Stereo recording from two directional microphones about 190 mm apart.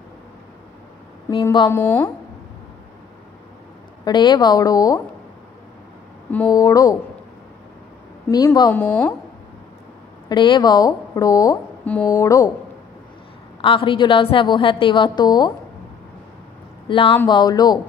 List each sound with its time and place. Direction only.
1.3 s a woman's voice: 25° left (ahead or behind)
1.7 s a woman's voice: 15° left (ahead or behind)
4.0 s a woman's voice: 20° left (ahead or behind)
6.5 s a woman's voice: 20° left (ahead or behind)
8.3 s a woman's voice: 20° left (ahead or behind)
10.2 s a woman's voice: 25° left (ahead or behind)
13.6 s a woman's voice: 25° left (ahead or behind)
16.8 s a woman's voice: 30° left (ahead or behind)